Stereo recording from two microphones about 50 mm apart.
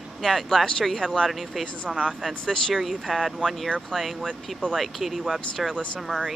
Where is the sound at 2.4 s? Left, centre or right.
Centre.